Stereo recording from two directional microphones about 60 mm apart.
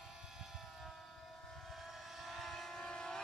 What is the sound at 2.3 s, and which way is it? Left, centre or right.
Vehicle, centre.